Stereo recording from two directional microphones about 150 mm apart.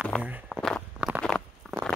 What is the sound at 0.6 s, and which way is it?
Walk, 5° left (ahead or behind).